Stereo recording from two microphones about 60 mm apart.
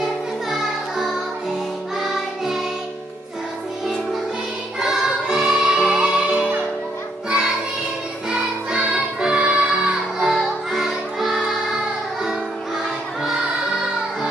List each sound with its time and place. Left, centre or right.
0.0 s music: centre
4.7 s music: centre
8.3 s music: centre